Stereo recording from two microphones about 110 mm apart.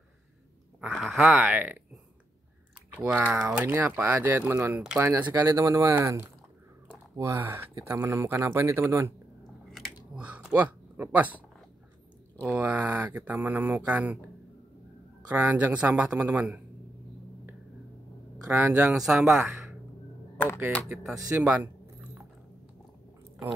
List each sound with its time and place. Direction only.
0.9 s speech: centre (ahead or behind)
1.4 s speech: 15° right (ahead or behind)
2.9 s speech: 10° right (ahead or behind)
10.1 s a sound: 10° right (ahead or behind)
12.5 s speech: 15° right (ahead or behind)
15.2 s speech: 15° right (ahead or behind)
18.7 s speech: 10° right (ahead or behind)
19.4 s a sound: centre (ahead or behind)
21.3 s speech: 20° right (ahead or behind)